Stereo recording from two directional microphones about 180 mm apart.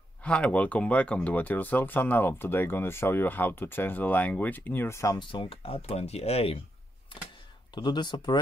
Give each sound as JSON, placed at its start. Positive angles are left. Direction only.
{"t": 0.2, "sound": "speech", "side_deg": 5}
{"t": 7.7, "sound": "speech", "side_deg": 25}